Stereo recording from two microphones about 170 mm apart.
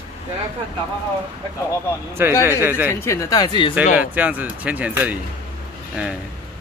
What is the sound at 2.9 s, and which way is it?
Speech, 15° left (ahead or behind).